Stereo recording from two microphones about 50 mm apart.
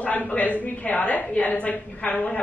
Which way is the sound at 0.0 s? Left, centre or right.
Left.